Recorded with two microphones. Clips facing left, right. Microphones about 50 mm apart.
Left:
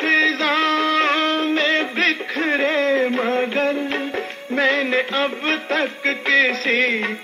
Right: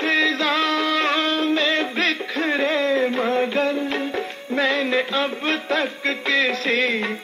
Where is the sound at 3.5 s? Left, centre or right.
Left.